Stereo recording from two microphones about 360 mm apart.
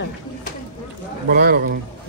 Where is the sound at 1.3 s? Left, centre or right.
Right.